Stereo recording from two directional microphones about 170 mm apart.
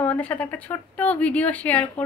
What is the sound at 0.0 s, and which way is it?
A woman's voice, 10° left (ahead or behind).